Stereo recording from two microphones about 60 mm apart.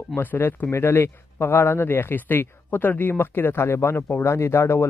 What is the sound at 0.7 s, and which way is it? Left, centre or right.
Speech, left.